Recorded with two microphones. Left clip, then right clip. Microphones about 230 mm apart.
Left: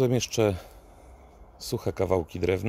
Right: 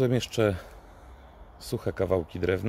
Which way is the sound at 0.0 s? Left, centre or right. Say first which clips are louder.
Left 1 dB; left.